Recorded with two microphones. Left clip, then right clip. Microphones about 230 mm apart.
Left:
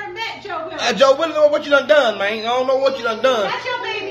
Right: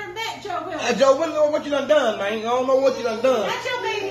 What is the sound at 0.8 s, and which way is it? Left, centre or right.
A man's voice, centre.